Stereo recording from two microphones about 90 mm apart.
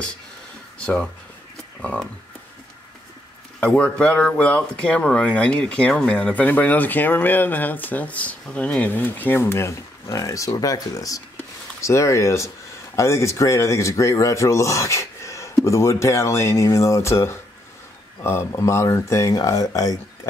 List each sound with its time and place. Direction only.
0.7 s a sound: 10° left (ahead or behind)
1.8 s speech: 15° left (ahead or behind)
3.6 s speech: 10° left (ahead or behind); by 20.0 s 40° left (ahead or behind)